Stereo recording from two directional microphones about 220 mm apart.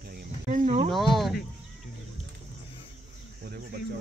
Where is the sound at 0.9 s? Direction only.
Centre (ahead or behind).